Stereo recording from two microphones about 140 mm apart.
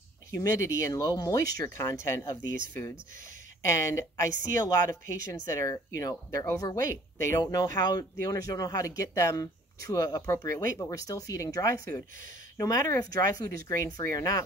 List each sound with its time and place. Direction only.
0.3 s speech: 20° left (ahead or behind)
3.6 s speech: 20° left (ahead or behind)
4.3 s speech: 75° right (ahead or behind)
4.6 s speech: 25° left (ahead or behind)